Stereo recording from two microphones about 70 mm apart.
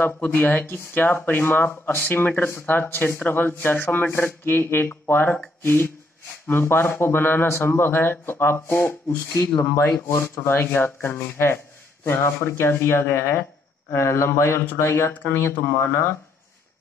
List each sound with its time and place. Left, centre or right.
0.0 s a man's voice: left